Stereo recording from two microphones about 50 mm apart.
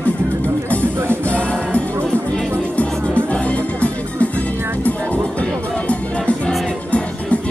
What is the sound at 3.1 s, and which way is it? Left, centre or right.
Music, left.